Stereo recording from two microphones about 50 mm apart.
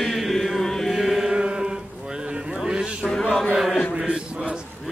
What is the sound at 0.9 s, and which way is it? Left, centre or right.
Chant, centre.